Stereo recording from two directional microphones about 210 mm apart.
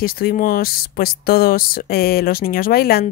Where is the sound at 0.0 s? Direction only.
45° left (ahead or behind).